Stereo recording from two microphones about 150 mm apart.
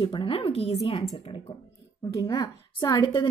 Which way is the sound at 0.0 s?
35° left (ahead or behind).